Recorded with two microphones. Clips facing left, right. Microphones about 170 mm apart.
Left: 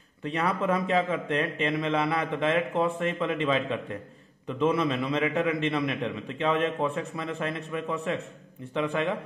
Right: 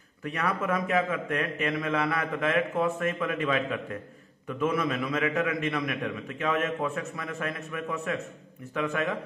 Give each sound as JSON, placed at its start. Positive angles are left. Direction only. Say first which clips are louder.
{"t": 0.2, "sound": "a man's voice", "louder": "left 2 dB", "side_deg": 25}